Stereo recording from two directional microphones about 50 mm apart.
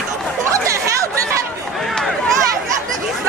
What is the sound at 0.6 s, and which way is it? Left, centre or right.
Chatter, right.